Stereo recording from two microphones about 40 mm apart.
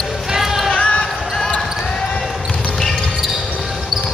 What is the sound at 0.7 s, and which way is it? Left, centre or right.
Basketball bounce, left.